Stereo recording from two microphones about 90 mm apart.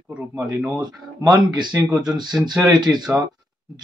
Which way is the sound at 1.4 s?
55° right (ahead or behind).